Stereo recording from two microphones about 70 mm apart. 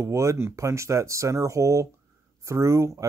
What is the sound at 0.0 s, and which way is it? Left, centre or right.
Speech, right.